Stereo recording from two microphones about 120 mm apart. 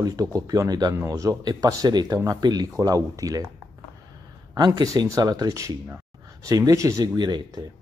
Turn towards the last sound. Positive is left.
turn(degrees=-35)  # may be behind; listen again after turning